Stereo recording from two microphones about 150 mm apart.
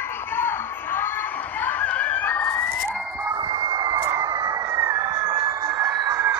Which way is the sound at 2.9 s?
15° right (ahead or behind).